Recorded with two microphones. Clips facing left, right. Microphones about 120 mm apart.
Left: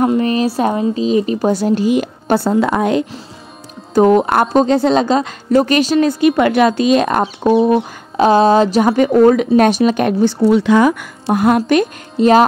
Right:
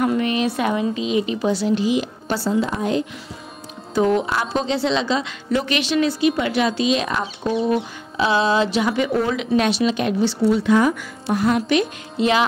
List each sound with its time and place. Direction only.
0.0 s a woman's voice: 35° left (ahead or behind); by 3.1 s 70° left (ahead or behind)
3.9 s a woman's voice: 50° left (ahead or behind)
10.6 s speech: 85° left
11.3 s a woman's voice: 50° left (ahead or behind)